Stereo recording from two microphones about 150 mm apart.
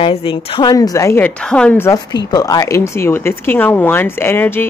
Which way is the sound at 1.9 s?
25° left (ahead or behind).